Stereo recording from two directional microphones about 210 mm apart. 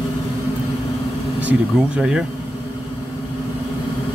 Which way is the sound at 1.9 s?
5° right (ahead or behind).